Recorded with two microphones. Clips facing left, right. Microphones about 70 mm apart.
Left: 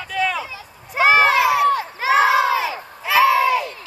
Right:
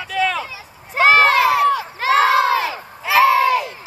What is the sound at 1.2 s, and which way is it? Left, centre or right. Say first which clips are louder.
Crowd: right 1 dB; centre.